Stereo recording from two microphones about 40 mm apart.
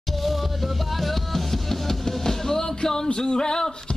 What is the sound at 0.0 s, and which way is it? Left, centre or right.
Music, centre.